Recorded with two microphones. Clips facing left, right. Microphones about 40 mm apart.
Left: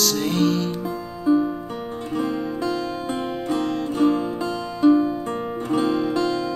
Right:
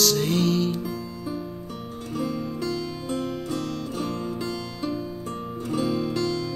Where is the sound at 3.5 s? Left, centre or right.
Left.